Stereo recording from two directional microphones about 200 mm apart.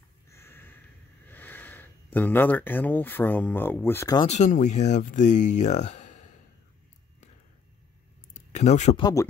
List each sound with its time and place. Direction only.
0.3 s a sound: 10° left (ahead or behind)
1.3 s speech: 10° left (ahead or behind)
4.2 s speech: 35° left (ahead or behind)
8.5 s speech: 35° left (ahead or behind)
9.0 s speech: 15° left (ahead or behind)